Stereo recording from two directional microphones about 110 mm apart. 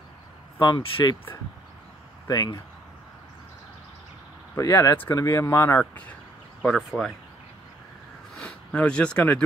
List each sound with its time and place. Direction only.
0.6 s speech: 45° left (ahead or behind)
2.2 s speech: 35° left (ahead or behind)
4.6 s speech: 30° left (ahead or behind)
5.8 s speech: 15° left (ahead or behind)
8.4 s speech: 10° left (ahead or behind)